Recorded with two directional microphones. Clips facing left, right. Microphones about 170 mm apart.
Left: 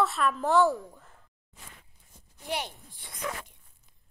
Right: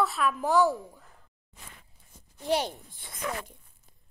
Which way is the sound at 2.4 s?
35° right (ahead or behind).